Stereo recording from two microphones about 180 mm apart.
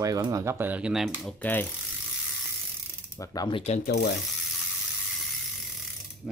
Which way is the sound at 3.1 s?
20° left (ahead or behind).